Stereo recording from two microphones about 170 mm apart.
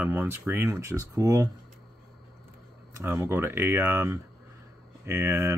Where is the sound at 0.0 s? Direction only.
10° right (ahead or behind).